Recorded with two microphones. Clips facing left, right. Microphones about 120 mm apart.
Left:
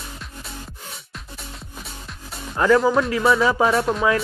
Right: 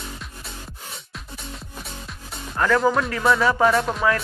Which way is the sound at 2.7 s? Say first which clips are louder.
Left 2 dB; 5° left (ahead or behind).